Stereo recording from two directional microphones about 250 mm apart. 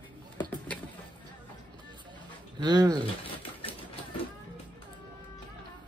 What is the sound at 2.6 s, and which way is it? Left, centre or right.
Speech, centre.